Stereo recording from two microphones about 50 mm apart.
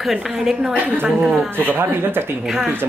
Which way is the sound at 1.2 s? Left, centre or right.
Centre.